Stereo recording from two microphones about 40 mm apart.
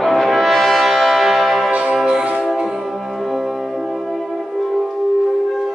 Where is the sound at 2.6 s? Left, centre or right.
Centre.